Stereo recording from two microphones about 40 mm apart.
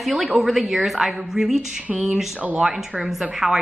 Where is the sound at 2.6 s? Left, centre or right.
Centre.